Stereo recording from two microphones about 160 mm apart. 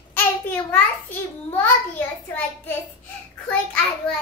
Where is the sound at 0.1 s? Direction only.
10° left (ahead or behind).